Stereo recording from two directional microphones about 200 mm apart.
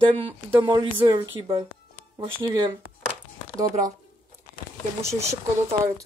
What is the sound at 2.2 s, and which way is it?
Speech, 25° right (ahead or behind).